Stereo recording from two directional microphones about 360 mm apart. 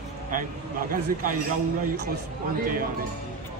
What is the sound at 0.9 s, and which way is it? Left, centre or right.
Speech, right.